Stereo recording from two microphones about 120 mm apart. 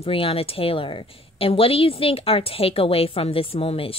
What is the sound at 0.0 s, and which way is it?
Speech, 50° left (ahead or behind).